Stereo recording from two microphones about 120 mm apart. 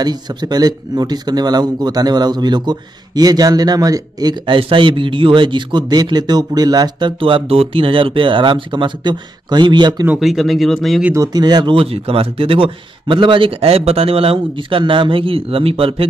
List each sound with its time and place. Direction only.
0.0 s a man's voice: 35° right (ahead or behind)
4.6 s a man's voice: 45° right (ahead or behind)
10.1 s speech: centre (ahead or behind)
11.1 s speech: 35° right (ahead or behind); by 16.1 s 50° right (ahead or behind)